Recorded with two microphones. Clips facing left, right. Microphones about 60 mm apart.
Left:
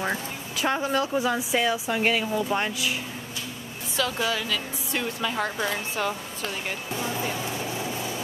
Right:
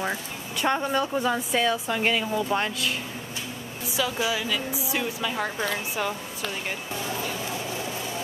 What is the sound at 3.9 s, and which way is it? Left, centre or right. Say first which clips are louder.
Speech: even; centre.